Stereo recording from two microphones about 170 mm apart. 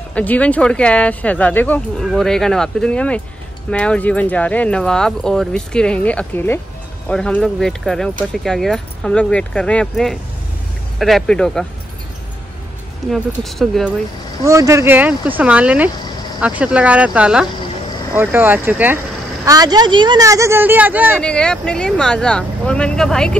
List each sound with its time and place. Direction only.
0.1 s speech: 10° left (ahead or behind)
13.3 s speech: centre (ahead or behind)
14.4 s speech: 20° right (ahead or behind)
19.4 s speech: 20° right (ahead or behind)
21.2 s speech: 5° left (ahead or behind)